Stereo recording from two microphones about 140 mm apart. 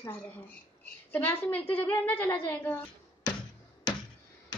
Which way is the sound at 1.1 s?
10° left (ahead or behind).